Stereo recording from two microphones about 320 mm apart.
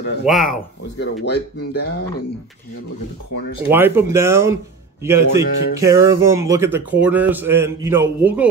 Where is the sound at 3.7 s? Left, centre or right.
Centre.